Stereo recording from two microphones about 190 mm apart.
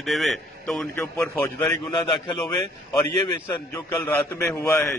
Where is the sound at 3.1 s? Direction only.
15° left (ahead or behind).